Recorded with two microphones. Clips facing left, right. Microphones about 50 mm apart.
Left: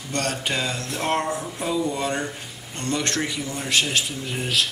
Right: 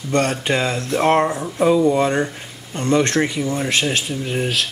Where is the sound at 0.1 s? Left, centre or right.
Right.